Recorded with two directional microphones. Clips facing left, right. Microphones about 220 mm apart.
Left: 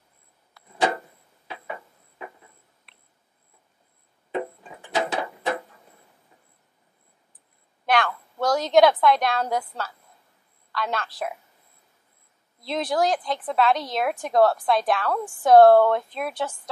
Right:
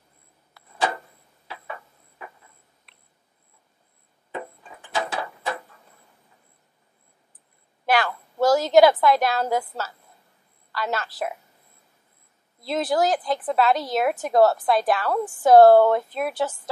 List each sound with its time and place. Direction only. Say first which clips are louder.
0.6 s vehicle: left 1 dB; 5° right (ahead or behind)
1.5 s a sound: left 2 dB; 20° left (ahead or behind)
4.3 s music: left 6 dB; 20° left (ahead or behind)
7.8 s a woman's voice: right 1 dB; 5° right (ahead or behind)
12.6 s a woman's voice: right 1 dB; 5° right (ahead or behind)